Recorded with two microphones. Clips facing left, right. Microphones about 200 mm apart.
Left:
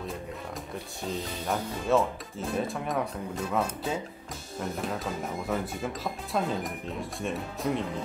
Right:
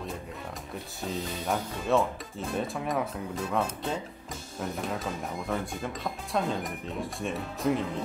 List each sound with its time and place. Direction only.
1.2 s speech: centre (ahead or behind)